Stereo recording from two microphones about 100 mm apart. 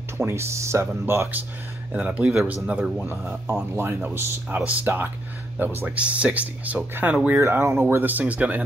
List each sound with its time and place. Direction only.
0.2 s speech: 30° right (ahead or behind)
1.9 s speech: 15° right (ahead or behind)
3.1 s speech: 20° right (ahead or behind)
7.2 s speech: 25° right (ahead or behind)